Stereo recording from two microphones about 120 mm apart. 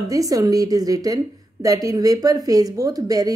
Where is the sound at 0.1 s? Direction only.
30° right (ahead or behind).